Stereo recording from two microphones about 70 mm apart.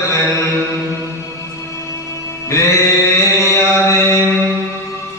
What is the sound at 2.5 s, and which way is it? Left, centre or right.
Music, left.